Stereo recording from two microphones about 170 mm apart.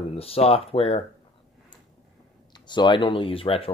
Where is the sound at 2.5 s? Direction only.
25° left (ahead or behind).